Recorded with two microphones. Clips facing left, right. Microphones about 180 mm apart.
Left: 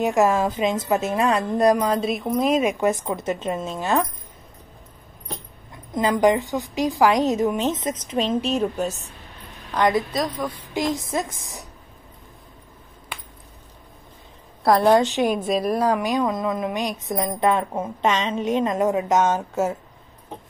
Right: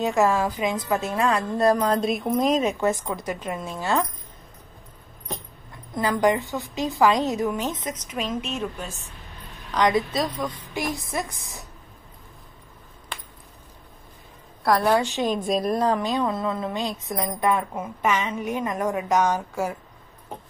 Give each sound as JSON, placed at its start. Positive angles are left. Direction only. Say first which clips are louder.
{"t": 0.0, "sound": "a woman's voice", "louder": "left 2 dB", "side_deg": 15}
{"t": 5.9, "sound": "a woman's voice", "louder": "left 3 dB", "side_deg": 20}
{"t": 9.8, "sound": "a woman's voice", "louder": "left 1 dB", "side_deg": 0}
{"t": 10.7, "sound": "a woman's voice", "louder": "left 5 dB", "side_deg": 15}
{"t": 14.6, "sound": "a woman's voice", "louder": "left 4 dB", "side_deg": 25}